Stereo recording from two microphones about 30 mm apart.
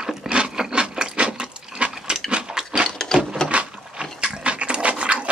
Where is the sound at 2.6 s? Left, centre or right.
Right.